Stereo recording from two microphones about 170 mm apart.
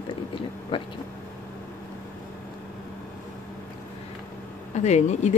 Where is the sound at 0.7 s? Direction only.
30° left (ahead or behind).